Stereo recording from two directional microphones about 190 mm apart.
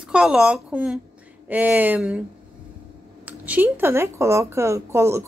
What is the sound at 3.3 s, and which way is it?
A woman's voice, 10° right (ahead or behind).